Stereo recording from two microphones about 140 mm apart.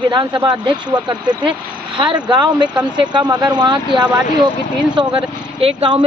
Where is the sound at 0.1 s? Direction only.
30° right (ahead or behind).